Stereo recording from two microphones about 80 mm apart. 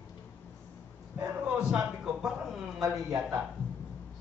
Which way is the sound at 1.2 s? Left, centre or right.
Centre.